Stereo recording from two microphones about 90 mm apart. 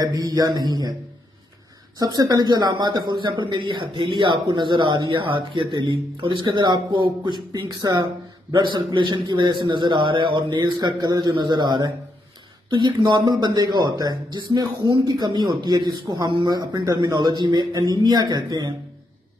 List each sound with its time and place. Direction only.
0.0 s a man's voice: 50° right (ahead or behind)
2.0 s speech: 45° right (ahead or behind); by 7.3 s 60° right (ahead or behind)
7.5 s a man's voice: 50° right (ahead or behind)